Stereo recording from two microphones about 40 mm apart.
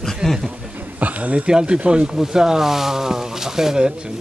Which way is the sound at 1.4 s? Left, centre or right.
Right.